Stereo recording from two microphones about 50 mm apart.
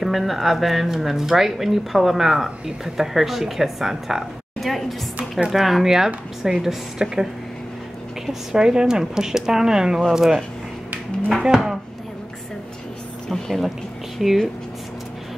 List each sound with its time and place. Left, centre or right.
0.0 s speech: centre
8.3 s speech: centre
11.4 s speech: centre
13.3 s a woman's voice: centre